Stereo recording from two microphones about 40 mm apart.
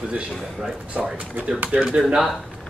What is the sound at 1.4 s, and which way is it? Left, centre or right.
Speech, right.